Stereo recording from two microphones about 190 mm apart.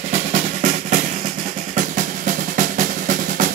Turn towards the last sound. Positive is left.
turn(degrees=-45)  # may be behind; listen again after turning